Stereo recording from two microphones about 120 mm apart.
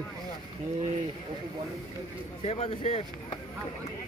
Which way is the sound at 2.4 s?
65° left (ahead or behind).